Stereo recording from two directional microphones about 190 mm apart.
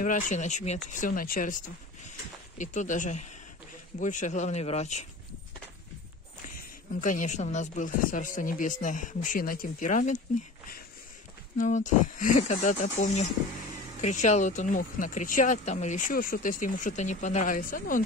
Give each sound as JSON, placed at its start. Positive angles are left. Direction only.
{"t": 0.0, "sound": "speech", "side_deg": 40}
{"t": 7.0, "sound": "speech", "side_deg": 45}
{"t": 11.5, "sound": "speech", "side_deg": 40}